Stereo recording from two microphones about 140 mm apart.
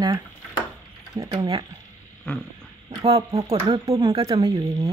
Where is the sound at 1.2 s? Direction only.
30° right (ahead or behind).